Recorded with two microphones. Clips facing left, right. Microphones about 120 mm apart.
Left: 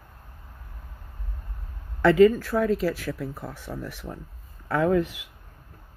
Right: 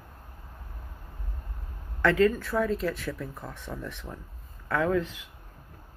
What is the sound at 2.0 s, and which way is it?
Speech, 5° left (ahead or behind).